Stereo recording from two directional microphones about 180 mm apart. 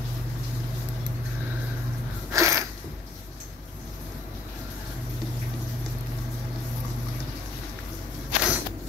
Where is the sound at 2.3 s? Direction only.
15° right (ahead or behind).